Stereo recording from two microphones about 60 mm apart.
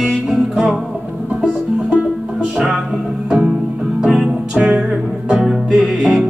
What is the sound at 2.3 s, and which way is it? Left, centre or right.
Music, centre.